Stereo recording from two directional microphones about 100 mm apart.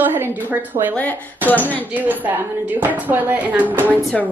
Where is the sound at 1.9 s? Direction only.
20° right (ahead or behind).